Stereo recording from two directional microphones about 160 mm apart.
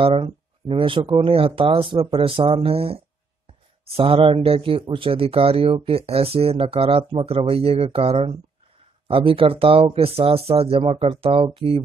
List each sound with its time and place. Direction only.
0.0 s a man's voice: 35° right (ahead or behind)